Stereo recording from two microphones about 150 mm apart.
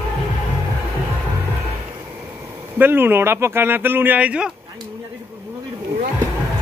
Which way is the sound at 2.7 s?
15° right (ahead or behind).